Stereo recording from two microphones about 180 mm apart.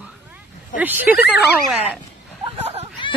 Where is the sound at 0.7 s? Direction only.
10° right (ahead or behind).